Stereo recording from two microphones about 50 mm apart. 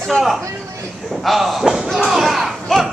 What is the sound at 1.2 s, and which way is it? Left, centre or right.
Slam, centre.